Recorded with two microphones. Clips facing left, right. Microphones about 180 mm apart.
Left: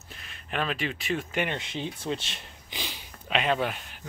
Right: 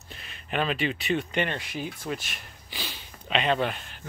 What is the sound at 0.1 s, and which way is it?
Speech, centre (ahead or behind).